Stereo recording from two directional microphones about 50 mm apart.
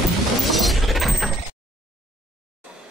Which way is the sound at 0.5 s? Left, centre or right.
Centre.